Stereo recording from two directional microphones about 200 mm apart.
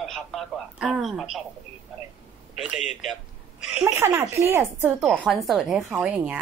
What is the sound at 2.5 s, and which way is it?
Speech, centre (ahead or behind).